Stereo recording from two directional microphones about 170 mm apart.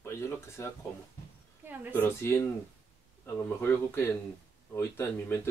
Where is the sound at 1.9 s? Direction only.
10° left (ahead or behind).